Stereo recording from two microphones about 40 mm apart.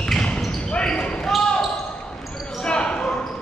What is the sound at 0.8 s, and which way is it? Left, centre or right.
Basketball bounce, centre.